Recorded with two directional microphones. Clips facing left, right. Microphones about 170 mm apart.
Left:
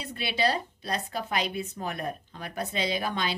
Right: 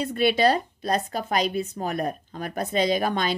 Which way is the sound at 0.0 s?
50° right (ahead or behind).